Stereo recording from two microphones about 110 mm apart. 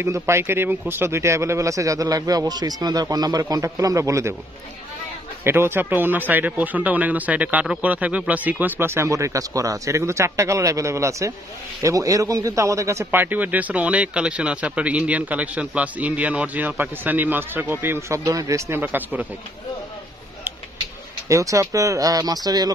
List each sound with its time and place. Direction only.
0.0 s speech: 25° right (ahead or behind)
5.4 s a man's voice: 20° right (ahead or behind)
21.3 s speech: 30° right (ahead or behind)